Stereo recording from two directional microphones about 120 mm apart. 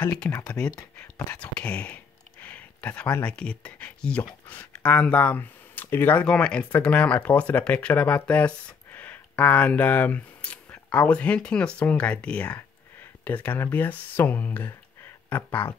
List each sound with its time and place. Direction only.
0.0 s speech: 10° left (ahead or behind)
2.4 s a sound: 10° left (ahead or behind)
3.3 s speech: 10° left (ahead or behind)